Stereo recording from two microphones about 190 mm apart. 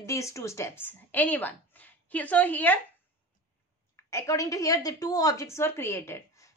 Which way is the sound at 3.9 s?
15° left (ahead or behind).